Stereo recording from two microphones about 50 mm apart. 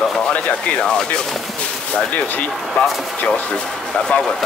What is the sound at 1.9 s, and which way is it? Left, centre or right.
Speech, left.